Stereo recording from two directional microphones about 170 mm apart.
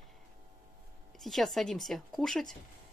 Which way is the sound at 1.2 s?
Centre (ahead or behind).